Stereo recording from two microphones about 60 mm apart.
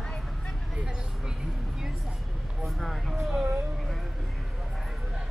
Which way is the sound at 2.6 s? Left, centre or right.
Centre.